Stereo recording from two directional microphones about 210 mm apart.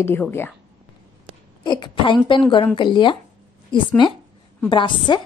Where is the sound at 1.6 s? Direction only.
20° left (ahead or behind).